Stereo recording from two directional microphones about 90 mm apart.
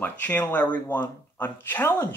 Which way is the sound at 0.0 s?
15° left (ahead or behind).